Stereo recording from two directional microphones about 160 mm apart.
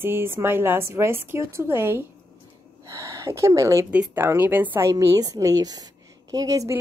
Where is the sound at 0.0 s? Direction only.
15° right (ahead or behind).